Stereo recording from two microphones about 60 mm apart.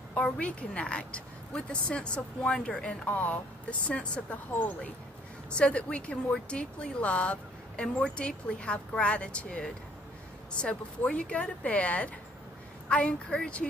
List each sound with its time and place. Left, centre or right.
0.1 s a woman's voice: left